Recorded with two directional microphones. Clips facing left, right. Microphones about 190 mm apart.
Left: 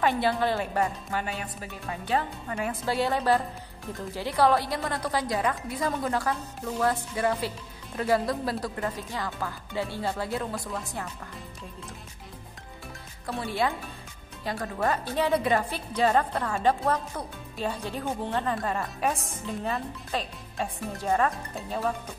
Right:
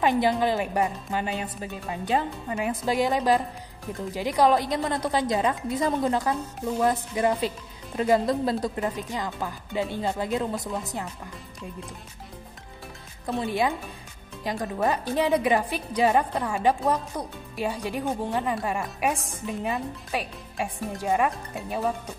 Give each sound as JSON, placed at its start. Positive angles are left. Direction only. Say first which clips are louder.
{"t": 0.0, "sound": "a woman's voice", "louder": "right 3 dB", "side_deg": -15}
{"t": 13.3, "sound": "a woman's voice", "louder": "right 3 dB", "side_deg": -20}